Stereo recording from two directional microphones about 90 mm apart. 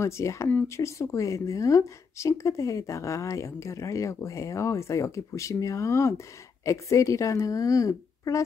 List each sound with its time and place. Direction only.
0.0 s speech: 35° left (ahead or behind)